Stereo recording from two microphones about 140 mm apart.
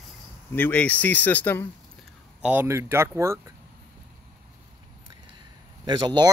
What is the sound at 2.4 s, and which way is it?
Speech, 10° right (ahead or behind).